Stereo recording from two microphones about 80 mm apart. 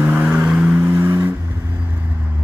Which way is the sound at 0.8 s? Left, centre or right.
Right.